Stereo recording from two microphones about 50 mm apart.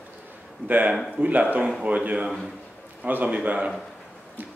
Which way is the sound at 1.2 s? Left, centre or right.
Right.